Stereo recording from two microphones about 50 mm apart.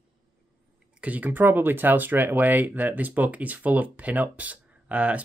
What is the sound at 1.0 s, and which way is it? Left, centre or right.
Speech, right.